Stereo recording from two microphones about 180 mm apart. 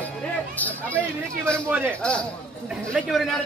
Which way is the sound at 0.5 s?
10° left (ahead or behind).